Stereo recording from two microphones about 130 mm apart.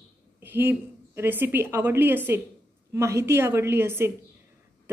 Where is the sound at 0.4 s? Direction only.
15° right (ahead or behind).